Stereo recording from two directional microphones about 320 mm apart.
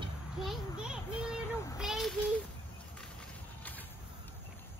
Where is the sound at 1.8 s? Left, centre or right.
Centre.